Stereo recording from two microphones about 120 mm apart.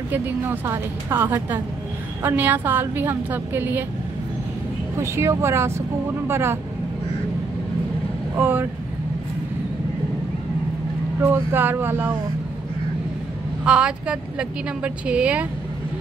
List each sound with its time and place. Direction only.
0.1 s a woman's voice: 15° right (ahead or behind)
4.9 s speech: 20° right (ahead or behind)
8.4 s a woman's voice: 15° right (ahead or behind)
11.2 s a woman's voice: 20° right (ahead or behind)
13.7 s a woman's voice: 10° right (ahead or behind)